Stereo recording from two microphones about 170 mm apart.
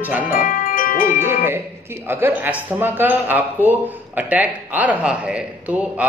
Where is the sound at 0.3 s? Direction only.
55° left (ahead or behind).